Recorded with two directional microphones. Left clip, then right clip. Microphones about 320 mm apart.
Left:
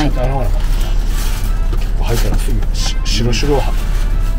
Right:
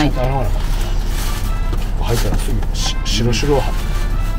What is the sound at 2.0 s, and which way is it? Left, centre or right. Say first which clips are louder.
Speech: even; centre.